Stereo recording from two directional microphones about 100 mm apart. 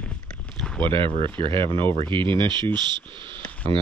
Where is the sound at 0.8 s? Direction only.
60° right (ahead or behind).